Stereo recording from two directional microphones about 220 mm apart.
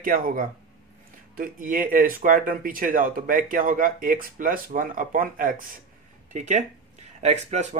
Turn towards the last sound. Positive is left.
turn(degrees=-30)  # may be behind; listen again after turning